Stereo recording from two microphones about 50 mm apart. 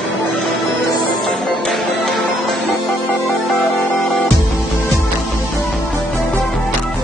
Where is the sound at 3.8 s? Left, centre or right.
Left.